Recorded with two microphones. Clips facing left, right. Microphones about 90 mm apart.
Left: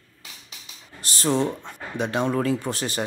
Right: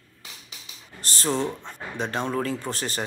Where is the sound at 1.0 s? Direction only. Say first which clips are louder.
Even; 40° right (ahead or behind).